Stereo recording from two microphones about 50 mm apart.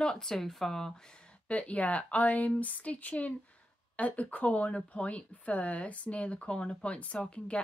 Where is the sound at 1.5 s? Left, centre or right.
Left.